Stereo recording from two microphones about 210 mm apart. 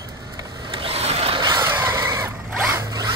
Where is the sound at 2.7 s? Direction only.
15° right (ahead or behind).